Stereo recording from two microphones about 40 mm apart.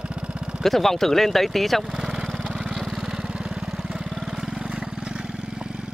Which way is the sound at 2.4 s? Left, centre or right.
Centre.